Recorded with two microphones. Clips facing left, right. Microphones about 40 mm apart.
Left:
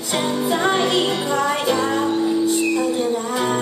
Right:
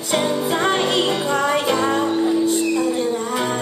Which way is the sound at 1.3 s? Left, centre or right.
Centre.